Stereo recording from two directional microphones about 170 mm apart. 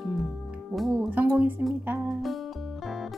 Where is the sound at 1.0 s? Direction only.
10° right (ahead or behind).